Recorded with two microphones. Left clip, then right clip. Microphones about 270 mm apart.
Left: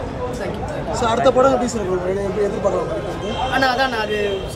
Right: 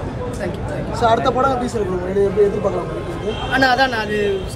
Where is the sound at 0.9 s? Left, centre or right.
Centre.